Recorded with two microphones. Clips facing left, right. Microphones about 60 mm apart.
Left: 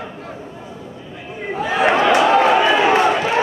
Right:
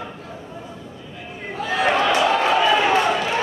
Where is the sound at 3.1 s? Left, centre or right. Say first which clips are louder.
Left 3 dB; left.